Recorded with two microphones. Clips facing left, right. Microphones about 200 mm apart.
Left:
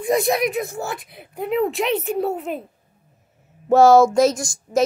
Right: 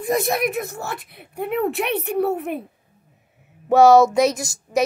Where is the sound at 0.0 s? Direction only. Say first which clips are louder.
Left 2 dB; 55° right (ahead or behind).